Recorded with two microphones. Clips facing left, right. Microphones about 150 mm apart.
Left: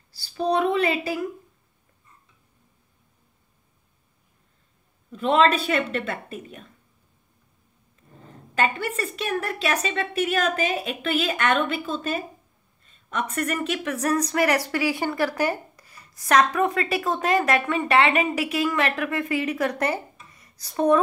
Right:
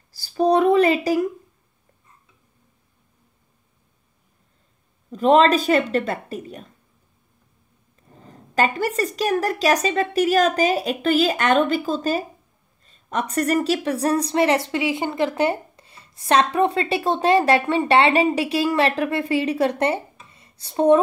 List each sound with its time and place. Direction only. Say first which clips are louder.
0.1 s a sound: right 6 dB; 45° right (ahead or behind)
5.1 s a woman's voice: right 4 dB; 40° right (ahead or behind)
8.3 s a woman's voice: right 3 dB; 35° right (ahead or behind)